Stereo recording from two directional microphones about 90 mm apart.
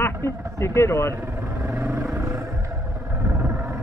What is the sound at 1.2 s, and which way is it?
Vehicle, 25° right (ahead or behind).